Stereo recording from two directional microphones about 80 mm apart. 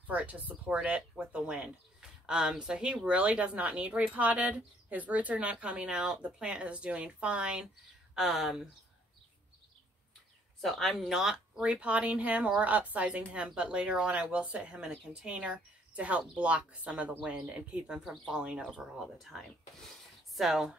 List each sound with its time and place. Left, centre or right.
0.0 s speech: centre
10.6 s speech: centre